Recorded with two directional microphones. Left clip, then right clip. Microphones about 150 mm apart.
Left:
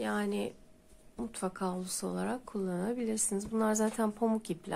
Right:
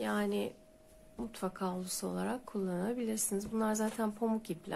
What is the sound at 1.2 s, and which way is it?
A woman's voice, 15° left (ahead or behind).